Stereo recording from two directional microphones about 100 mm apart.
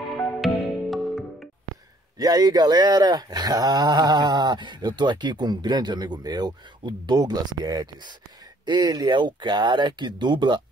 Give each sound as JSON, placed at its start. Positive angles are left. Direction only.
{"t": 0.4, "sound": "music", "side_deg": 0}
{"t": 2.1, "sound": "speech", "side_deg": -40}